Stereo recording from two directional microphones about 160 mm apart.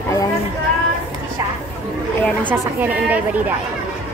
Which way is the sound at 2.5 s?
10° right (ahead or behind).